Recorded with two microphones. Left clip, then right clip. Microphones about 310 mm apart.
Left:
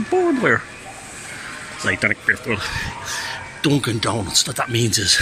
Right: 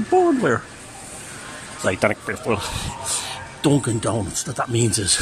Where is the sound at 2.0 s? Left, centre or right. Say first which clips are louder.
Left 5 dB; right.